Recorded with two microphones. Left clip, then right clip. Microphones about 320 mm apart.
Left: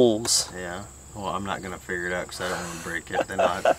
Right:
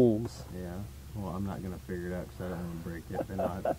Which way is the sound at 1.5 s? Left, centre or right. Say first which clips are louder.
Left 11 dB; centre.